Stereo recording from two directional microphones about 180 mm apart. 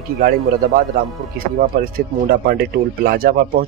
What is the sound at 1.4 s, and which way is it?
Speech, 55° right (ahead or behind).